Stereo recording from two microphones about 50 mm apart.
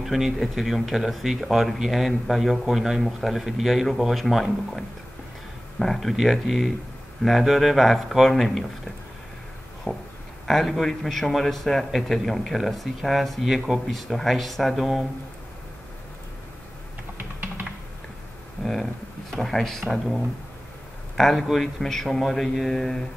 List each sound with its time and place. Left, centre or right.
0.0 s a man's voice: centre
5.8 s a man's voice: centre
9.9 s speech: centre
10.4 s a man's voice: centre
17.2 s typing: right
18.6 s a man's voice: centre
21.2 s a man's voice: centre